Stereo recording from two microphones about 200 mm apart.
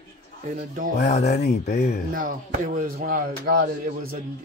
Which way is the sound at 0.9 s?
35° left (ahead or behind).